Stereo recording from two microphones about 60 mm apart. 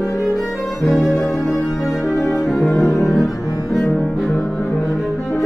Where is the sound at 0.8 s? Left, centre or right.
Centre.